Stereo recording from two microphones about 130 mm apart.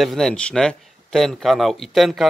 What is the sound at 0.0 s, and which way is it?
A man's voice, centre (ahead or behind).